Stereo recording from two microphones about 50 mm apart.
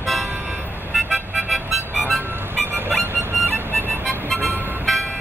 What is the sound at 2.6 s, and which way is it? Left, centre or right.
Music, right.